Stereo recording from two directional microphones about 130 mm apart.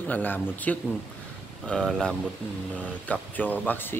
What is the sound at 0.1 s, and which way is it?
Speech, 15° left (ahead or behind).